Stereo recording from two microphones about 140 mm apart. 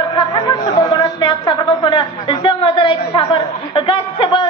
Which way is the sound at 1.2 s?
35° left (ahead or behind).